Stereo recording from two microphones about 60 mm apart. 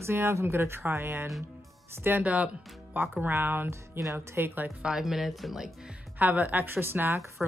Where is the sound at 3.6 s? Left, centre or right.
Right.